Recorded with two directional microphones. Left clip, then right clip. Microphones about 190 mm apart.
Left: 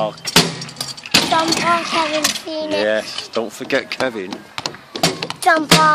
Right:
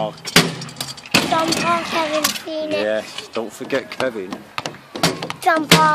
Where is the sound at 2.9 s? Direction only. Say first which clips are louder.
Left 3 dB; 35° left (ahead or behind).